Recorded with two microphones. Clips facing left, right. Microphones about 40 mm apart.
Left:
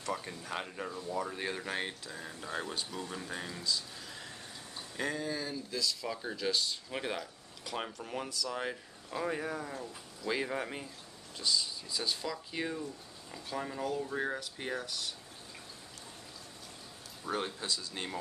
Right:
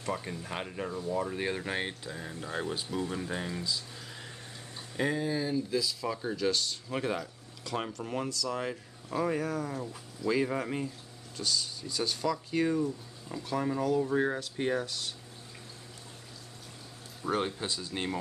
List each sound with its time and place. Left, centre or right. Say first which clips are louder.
0.1 s speech: right 2 dB; centre
8.5 s speech: right 1 dB; centre
9.1 s speech: right 5 dB; centre
9.4 s speech: right 4 dB; left
10.5 s speech: right 4 dB; centre
11.3 s speech: even; centre
12.8 s speech: right 9 dB; centre
17.2 s speech: right 5 dB; centre